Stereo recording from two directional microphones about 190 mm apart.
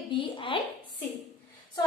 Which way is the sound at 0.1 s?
25° left (ahead or behind).